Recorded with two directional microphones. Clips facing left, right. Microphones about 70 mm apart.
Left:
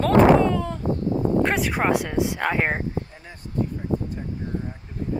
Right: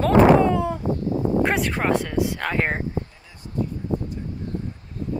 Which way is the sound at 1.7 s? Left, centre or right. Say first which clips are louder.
Even; centre.